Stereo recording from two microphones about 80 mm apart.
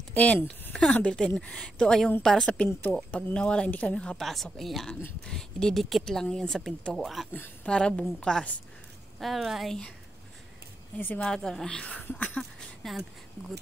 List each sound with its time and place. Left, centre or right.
0.1 s speech: centre
4.2 s speech: centre
9.2 s speech: centre
11.1 s speech: centre
12.4 s speech: centre